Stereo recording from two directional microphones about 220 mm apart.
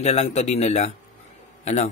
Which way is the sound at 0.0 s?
30° left (ahead or behind).